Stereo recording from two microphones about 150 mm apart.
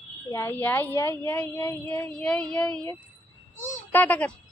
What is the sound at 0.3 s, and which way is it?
A woman's voice, 15° left (ahead or behind).